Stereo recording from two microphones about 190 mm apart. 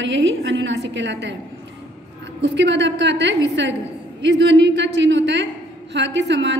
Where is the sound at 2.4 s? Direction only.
70° right (ahead or behind).